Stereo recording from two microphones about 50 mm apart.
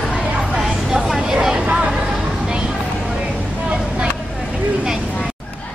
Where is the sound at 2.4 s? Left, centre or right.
Centre.